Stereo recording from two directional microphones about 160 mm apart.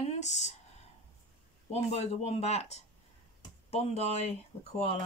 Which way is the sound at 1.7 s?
40° left (ahead or behind).